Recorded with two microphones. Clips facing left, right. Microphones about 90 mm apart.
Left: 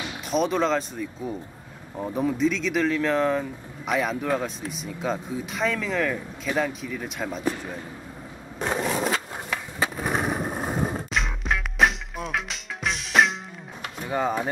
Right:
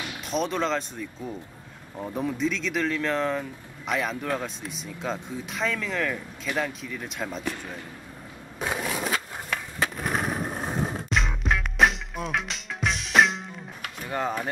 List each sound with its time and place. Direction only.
0.0 s speech: centre (ahead or behind)
8.5 s skateboard: centre (ahead or behind)
13.8 s a sound: 5° left (ahead or behind)